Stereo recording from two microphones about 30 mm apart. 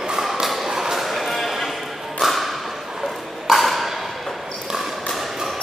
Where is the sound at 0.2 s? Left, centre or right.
Centre.